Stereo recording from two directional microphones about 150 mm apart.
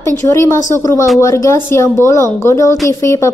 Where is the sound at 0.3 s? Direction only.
20° left (ahead or behind).